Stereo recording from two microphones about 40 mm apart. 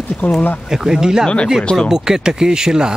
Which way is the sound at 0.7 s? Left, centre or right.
Centre.